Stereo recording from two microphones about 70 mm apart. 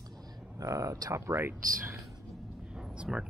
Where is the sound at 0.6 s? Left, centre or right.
Right.